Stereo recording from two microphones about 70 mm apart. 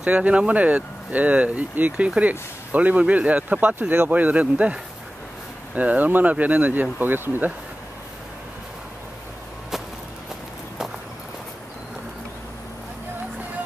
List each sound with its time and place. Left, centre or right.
0.0 s speech: centre
5.8 s speech: right